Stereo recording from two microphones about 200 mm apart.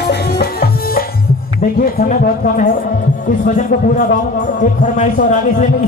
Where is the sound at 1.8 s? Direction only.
40° left (ahead or behind).